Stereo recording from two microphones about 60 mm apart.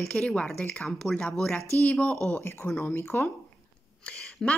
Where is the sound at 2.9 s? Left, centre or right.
Left.